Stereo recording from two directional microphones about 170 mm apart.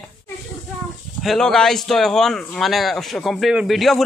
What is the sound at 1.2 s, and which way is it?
Speech, 5° left (ahead or behind).